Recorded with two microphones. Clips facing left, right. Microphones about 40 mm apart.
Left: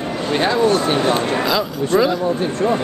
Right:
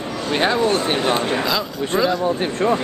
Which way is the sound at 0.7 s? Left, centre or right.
Right.